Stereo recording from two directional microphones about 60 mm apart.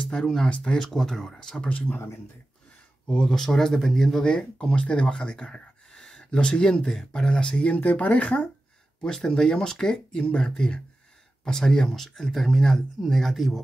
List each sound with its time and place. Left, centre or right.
0.1 s speech: centre
0.8 s speech: centre
1.9 s speech: left
3.1 s speech: centre